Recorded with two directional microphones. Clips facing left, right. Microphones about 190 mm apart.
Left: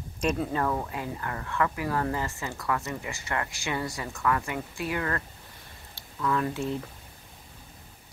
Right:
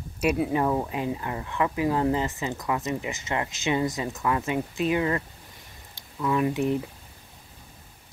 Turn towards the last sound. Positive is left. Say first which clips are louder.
# right 4 dB
turn(degrees=-15)  # may be behind; listen again after turning